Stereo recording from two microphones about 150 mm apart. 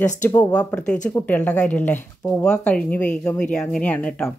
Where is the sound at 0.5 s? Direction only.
5° left (ahead or behind).